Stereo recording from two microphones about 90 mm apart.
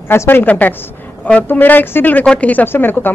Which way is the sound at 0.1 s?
25° left (ahead or behind).